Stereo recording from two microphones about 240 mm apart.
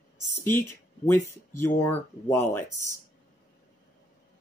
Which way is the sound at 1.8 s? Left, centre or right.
Centre.